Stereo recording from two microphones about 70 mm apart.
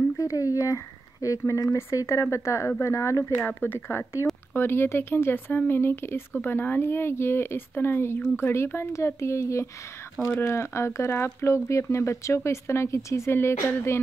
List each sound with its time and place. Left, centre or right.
0.2 s speech: left
3.3 s speech: left